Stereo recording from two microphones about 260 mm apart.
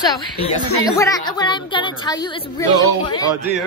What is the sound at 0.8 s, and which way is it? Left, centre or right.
A woman's voice, centre.